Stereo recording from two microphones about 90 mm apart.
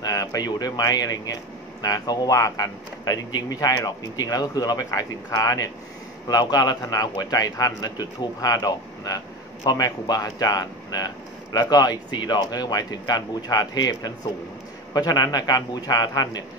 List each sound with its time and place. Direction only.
0.0 s a man's voice: 40° left (ahead or behind)